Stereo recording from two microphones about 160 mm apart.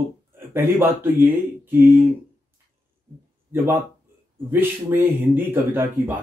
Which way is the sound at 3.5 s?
15° right (ahead or behind).